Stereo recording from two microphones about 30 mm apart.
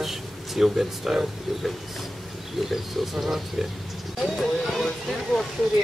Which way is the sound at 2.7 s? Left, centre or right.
Centre.